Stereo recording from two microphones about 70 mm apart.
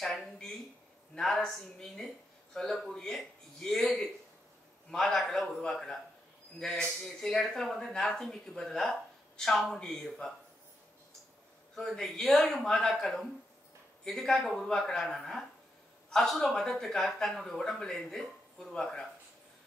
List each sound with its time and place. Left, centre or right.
0.0 s speech: centre
11.7 s speech: centre